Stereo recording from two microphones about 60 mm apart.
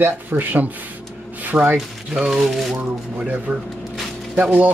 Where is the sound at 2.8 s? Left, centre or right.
Right.